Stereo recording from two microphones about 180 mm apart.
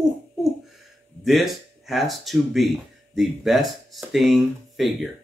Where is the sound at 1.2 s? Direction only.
Centre (ahead or behind).